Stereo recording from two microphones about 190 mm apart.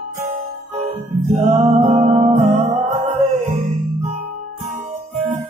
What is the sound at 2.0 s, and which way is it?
Music, 40° right (ahead or behind).